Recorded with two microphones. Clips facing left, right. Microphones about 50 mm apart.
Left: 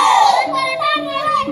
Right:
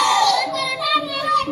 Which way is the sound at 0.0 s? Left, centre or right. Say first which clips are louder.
Left 5 dB; left.